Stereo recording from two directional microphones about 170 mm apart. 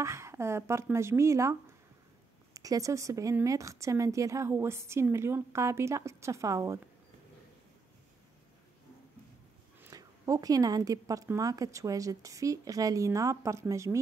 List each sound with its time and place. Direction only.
0.0 s speech: 15° right (ahead or behind)
9.8 s speech: 20° right (ahead or behind)